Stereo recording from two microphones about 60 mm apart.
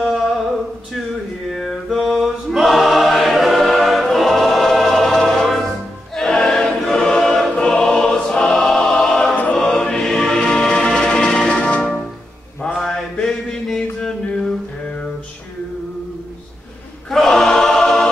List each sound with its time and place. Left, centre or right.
0.0 s a sound: centre
1.5 s choir: centre
9.6 s music: centre
12.7 s mantra: centre
17.1 s choir: centre